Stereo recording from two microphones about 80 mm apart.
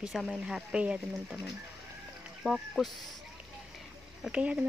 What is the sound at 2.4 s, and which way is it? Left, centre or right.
Speech, centre.